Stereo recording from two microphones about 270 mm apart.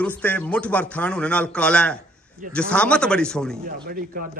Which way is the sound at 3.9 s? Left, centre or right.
Right.